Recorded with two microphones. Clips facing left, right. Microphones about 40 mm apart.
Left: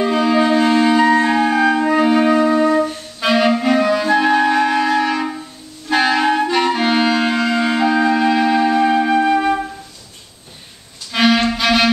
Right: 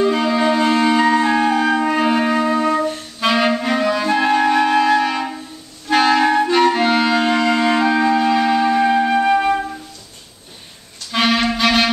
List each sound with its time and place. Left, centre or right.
0.0 s music: centre
5.9 s clarinet: centre
11.1 s music: centre